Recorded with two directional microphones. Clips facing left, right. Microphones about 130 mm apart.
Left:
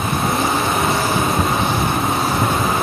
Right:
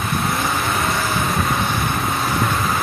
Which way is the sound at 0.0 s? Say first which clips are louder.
Left 3 dB; 25° left (ahead or behind).